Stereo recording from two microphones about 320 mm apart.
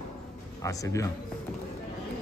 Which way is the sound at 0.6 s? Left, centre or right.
Centre.